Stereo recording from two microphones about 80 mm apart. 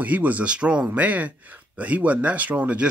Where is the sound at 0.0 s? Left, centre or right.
Right.